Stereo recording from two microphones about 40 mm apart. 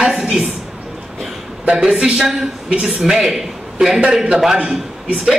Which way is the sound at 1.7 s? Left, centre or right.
Centre.